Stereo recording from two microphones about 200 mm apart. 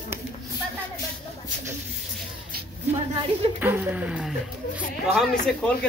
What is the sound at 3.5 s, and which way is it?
Speech, 10° right (ahead or behind).